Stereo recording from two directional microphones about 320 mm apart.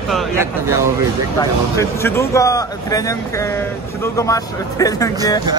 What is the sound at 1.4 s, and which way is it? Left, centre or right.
Speech, centre.